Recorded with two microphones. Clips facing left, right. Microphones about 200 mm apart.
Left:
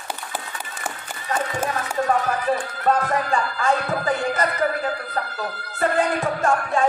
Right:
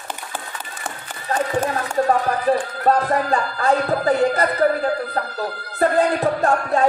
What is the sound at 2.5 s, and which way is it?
Speech, 35° right (ahead or behind).